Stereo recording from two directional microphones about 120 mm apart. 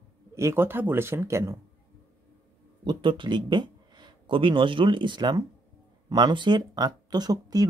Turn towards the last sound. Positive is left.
turn(degrees=-30)  # may be behind; listen again after turning